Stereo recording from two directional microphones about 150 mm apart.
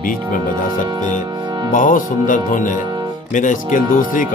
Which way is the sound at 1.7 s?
65° left (ahead or behind).